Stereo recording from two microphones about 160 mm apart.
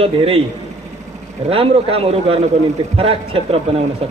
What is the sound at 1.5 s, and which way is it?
A man's voice, 35° right (ahead or behind).